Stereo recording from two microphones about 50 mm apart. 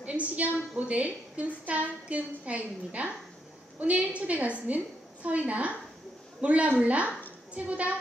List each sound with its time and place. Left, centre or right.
0.0 s a woman's voice: right